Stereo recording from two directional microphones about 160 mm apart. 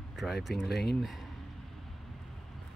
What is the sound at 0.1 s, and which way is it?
Speech, centre (ahead or behind).